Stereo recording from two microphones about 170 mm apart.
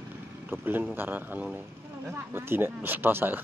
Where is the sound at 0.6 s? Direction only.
10° right (ahead or behind).